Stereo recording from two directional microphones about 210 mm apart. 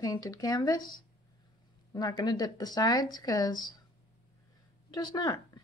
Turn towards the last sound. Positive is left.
turn(degrees=20)  # may be behind; listen again after turning